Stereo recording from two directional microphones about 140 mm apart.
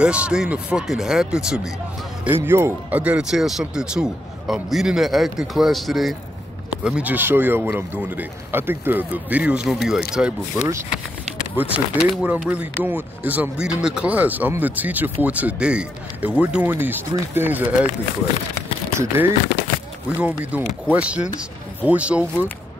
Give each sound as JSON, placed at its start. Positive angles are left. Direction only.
{"t": 0.0, "sound": "speech", "side_deg": -5}
{"t": 2.4, "sound": "speech", "side_deg": -15}
{"t": 11.7, "sound": "speech", "side_deg": -10}
{"t": 18.9, "sound": "speech", "side_deg": -15}